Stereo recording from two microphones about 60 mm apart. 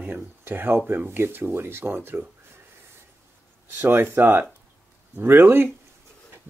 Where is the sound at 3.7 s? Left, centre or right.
Right.